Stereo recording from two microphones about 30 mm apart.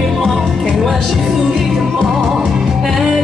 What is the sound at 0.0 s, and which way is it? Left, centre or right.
Music, centre.